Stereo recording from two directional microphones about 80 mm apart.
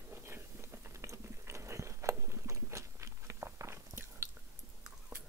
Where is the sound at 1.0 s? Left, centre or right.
Right.